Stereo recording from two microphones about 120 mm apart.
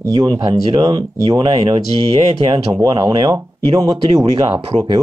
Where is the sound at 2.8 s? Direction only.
35° right (ahead or behind).